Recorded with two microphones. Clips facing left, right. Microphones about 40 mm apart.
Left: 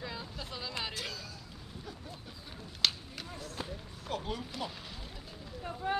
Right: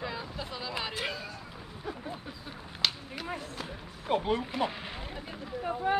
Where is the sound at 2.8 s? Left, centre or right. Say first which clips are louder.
Right 1 dB; centre.